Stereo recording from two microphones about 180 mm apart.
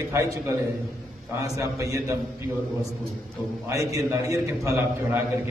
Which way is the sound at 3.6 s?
15° right (ahead or behind).